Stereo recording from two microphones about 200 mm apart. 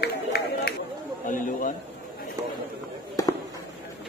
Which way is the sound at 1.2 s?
40° left (ahead or behind).